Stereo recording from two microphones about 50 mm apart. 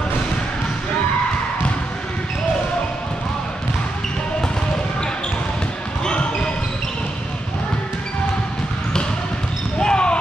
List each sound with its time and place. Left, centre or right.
9.8 s basketball bounce: centre